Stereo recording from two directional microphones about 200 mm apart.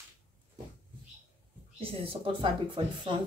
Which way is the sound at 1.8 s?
30° right (ahead or behind).